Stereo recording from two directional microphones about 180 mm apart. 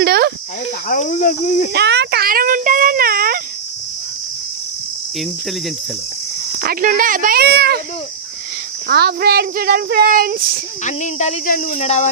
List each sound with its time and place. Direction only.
0.0 s cricket: 60° right (ahead or behind)
0.8 s speech: 45° left (ahead or behind)
1.7 s a sound: 70° right (ahead or behind)
6.6 s speech: 50° right (ahead or behind)
8.8 s speech: 60° right (ahead or behind)
10.8 s speech: 40° left (ahead or behind)